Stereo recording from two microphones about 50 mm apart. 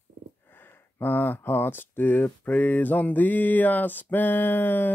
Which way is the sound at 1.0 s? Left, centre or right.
Left.